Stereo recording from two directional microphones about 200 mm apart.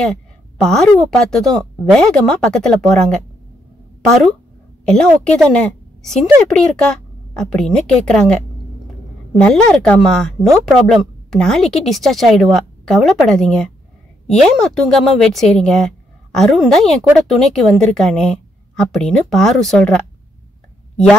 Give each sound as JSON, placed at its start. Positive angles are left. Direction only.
{"t": 0.1, "sound": "a woman's voice", "side_deg": 0}
{"t": 4.8, "sound": "a woman's voice", "side_deg": 5}